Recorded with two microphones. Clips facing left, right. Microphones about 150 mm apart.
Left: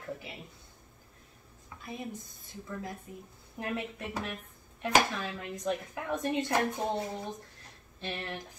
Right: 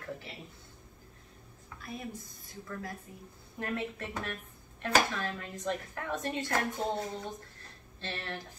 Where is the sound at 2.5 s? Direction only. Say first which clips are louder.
Left 1 dB; 20° left (ahead or behind).